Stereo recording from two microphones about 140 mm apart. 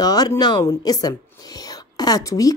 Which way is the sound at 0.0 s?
25° left (ahead or behind).